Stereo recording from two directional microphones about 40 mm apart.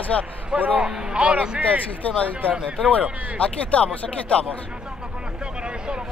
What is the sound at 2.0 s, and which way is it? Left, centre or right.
Speech, left.